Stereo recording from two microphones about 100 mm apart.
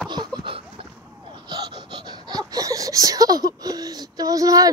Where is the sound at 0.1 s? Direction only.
45° right (ahead or behind); by 0.8 s 60° right (ahead or behind).